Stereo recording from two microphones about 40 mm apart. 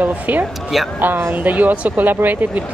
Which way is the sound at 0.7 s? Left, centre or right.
Centre.